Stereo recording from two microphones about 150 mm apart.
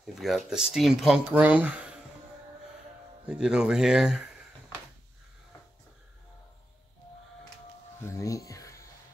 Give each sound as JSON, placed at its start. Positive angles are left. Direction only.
{"t": 0.0, "sound": "speech", "side_deg": 0}
{"t": 3.3, "sound": "speech", "side_deg": -5}
{"t": 8.0, "sound": "music", "side_deg": 20}